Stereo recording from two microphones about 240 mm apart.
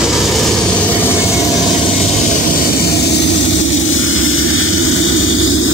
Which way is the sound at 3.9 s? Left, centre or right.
Left.